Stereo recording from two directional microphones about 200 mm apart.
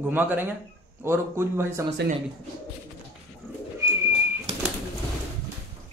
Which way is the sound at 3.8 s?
15° right (ahead or behind).